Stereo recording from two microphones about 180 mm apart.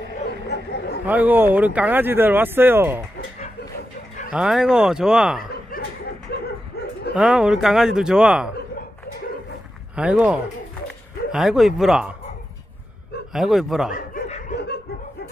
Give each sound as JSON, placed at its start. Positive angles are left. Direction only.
{"t": 1.0, "sound": "speech", "side_deg": -10}
{"t": 4.3, "sound": "speech", "side_deg": -5}
{"t": 5.4, "sound": "chuckle", "side_deg": 50}
{"t": 6.3, "sound": "a sound", "side_deg": 60}
{"t": 7.2, "sound": "speech", "side_deg": -5}
{"t": 9.9, "sound": "speech", "side_deg": -5}
{"t": 13.3, "sound": "speech", "side_deg": 0}
{"t": 13.9, "sound": "snicker", "side_deg": 50}